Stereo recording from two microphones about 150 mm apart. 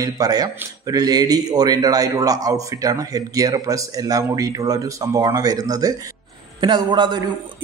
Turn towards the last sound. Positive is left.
turn(degrees=-30)  # may be behind; listen again after turning